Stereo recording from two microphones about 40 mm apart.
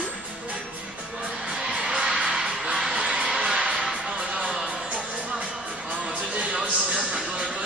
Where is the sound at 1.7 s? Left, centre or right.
Centre.